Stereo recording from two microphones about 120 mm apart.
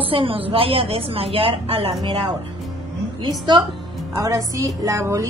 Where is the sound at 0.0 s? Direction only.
50° right (ahead or behind).